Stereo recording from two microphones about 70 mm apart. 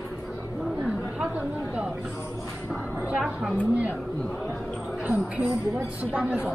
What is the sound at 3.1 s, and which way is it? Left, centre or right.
Speech, centre.